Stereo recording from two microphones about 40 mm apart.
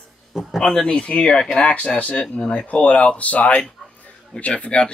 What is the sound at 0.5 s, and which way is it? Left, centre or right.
Speech, centre.